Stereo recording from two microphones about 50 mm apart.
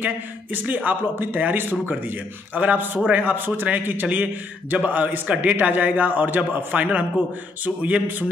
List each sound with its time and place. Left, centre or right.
0.0 s a man's voice: right